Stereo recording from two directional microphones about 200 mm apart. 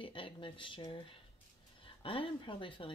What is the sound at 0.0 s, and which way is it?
Speech, 25° left (ahead or behind).